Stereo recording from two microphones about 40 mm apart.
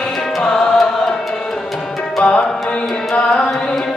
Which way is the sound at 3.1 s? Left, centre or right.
Centre.